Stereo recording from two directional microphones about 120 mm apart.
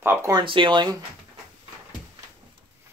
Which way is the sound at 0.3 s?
40° right (ahead or behind).